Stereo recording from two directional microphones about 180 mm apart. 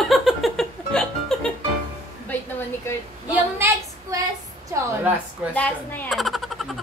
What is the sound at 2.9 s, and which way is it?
Speech, 15° left (ahead or behind).